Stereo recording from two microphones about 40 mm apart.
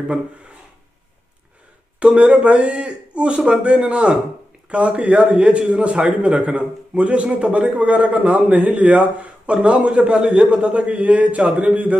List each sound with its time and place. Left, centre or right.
2.0 s a man's voice: right